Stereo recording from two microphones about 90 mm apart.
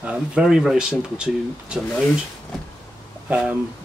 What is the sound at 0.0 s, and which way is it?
Speech, 10° right (ahead or behind).